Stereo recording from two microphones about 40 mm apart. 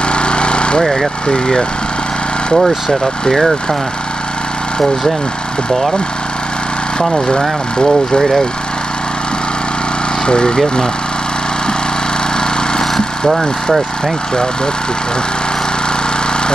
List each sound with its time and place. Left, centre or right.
0.1 s a sound: left
1.2 s speech: left
2.5 s speech: centre
10.2 s speech: left
12.7 s vehicle: centre